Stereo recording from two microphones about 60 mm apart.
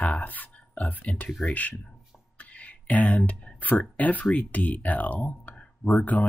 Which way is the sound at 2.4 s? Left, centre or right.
Left.